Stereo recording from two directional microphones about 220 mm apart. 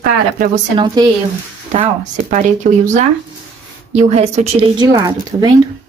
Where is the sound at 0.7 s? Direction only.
20° right (ahead or behind).